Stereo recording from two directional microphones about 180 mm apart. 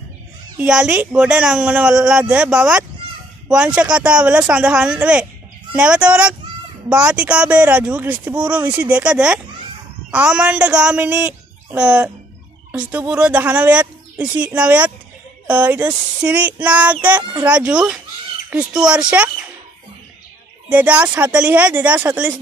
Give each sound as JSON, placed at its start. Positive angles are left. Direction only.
{"t": 0.6, "sound": "speech", "side_deg": -5}
{"t": 20.7, "sound": "speech", "side_deg": -5}